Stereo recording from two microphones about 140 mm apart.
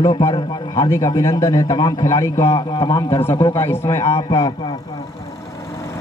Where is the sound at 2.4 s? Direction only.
40° left (ahead or behind).